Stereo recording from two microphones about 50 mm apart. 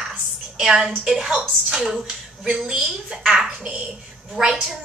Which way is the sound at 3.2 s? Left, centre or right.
Centre.